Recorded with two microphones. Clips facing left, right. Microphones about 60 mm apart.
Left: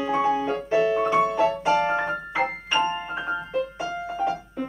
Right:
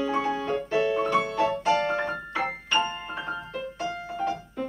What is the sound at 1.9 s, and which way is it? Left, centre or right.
Piano, centre.